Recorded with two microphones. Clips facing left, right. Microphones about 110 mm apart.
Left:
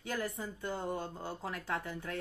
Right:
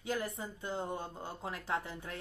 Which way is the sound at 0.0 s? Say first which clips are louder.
Even; 20° right (ahead or behind).